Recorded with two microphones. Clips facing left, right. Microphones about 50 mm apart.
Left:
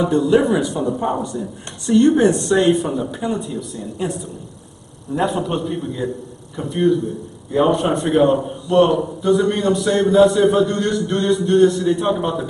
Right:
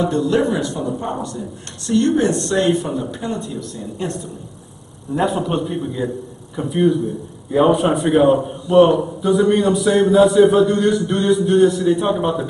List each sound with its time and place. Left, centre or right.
0.0 s speech: centre
2.0 s speech: left
2.2 s a man's voice: centre